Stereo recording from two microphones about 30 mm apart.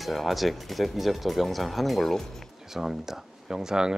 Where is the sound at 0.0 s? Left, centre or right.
Centre.